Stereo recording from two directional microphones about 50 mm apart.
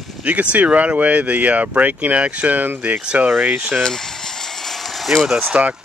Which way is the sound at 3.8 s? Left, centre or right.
Centre.